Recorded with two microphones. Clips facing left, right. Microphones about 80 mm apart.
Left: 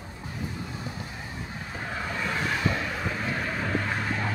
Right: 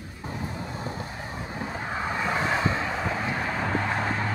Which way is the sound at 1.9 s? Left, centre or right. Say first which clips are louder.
Right 3 dB; right.